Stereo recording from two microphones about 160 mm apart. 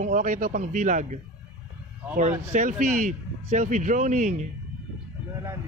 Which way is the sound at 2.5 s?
50° right (ahead or behind).